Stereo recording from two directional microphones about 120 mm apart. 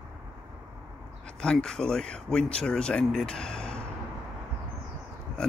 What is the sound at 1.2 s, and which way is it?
Speech, 5° left (ahead or behind).